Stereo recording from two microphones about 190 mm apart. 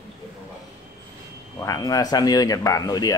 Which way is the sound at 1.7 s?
20° left (ahead or behind).